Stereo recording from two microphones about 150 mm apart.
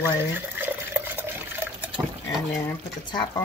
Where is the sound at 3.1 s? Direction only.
30° left (ahead or behind).